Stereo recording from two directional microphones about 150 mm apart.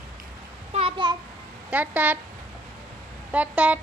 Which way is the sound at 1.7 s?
10° right (ahead or behind).